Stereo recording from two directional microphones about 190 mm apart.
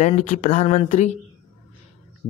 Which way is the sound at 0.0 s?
40° left (ahead or behind).